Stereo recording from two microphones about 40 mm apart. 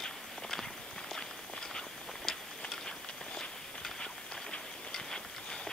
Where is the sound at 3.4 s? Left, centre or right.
Centre.